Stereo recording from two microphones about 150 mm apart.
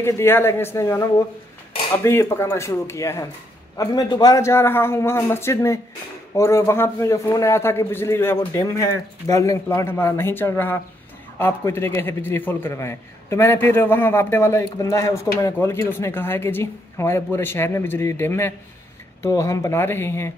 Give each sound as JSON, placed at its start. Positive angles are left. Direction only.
{"t": 0.0, "sound": "a man's voice", "side_deg": 15}
{"t": 2.0, "sound": "a man's voice", "side_deg": 15}